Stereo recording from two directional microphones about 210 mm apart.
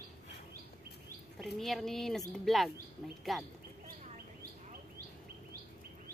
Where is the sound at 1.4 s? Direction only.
Centre (ahead or behind).